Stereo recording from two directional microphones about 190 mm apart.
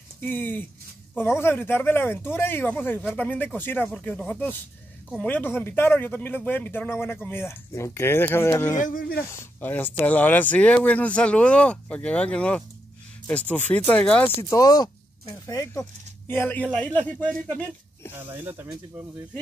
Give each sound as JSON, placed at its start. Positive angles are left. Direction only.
{"t": 0.2, "sound": "speech", "side_deg": 10}
{"t": 8.8, "sound": "speech", "side_deg": 50}
{"t": 9.3, "sound": "speech", "side_deg": 10}
{"t": 14.5, "sound": "speech", "side_deg": 20}
{"t": 18.1, "sound": "speech", "side_deg": -10}